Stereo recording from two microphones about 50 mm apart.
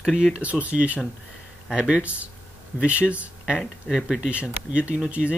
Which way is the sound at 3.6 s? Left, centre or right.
Centre.